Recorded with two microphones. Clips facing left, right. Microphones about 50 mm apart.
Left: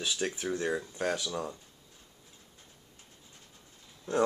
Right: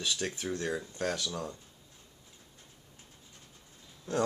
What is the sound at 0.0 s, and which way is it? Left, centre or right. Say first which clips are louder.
Speech: left 2 dB; centre.